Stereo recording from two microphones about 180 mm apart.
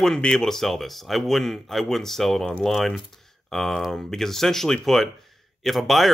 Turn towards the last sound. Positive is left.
turn(degrees=0)  # may be behind; listen again after turning